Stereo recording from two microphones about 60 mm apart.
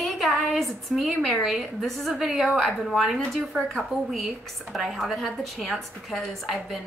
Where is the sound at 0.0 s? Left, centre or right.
Centre.